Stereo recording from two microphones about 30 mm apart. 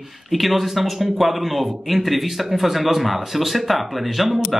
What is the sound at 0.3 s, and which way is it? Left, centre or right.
A man's voice, centre.